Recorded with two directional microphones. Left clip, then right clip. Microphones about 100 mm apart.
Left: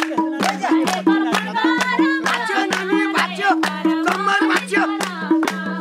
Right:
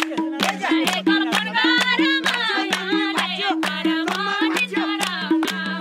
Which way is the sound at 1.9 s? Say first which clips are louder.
Left 1 dB; 65° right (ahead or behind).